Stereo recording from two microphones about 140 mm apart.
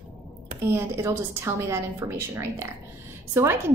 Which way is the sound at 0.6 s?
20° right (ahead or behind).